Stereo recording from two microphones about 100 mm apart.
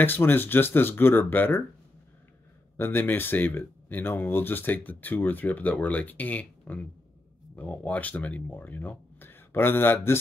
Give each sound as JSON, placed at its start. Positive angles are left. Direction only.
{"t": 0.0, "sound": "speech", "side_deg": 20}
{"t": 2.8, "sound": "speech", "side_deg": 20}